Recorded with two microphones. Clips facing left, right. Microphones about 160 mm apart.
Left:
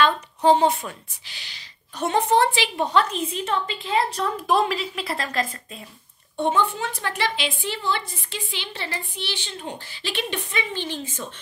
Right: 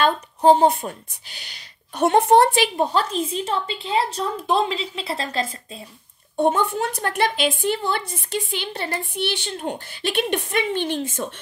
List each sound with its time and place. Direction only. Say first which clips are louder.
0.0 s a woman's voice: right 2 dB; 45° right (ahead or behind)
2.0 s a woman's voice: right 5 dB; 55° right (ahead or behind); by 5.5 s 30° right (ahead or behind)
6.3 s a woman's voice: right 3 dB; 45° right (ahead or behind)